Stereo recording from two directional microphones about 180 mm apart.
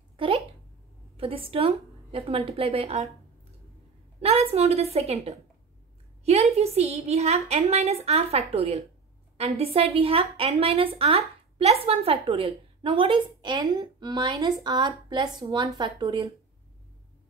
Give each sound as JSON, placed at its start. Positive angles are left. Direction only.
{"t": 0.2, "sound": "a sound", "side_deg": -30}
{"t": 1.1, "sound": "a woman's voice", "side_deg": -30}
{"t": 4.2, "sound": "a woman's voice", "side_deg": -35}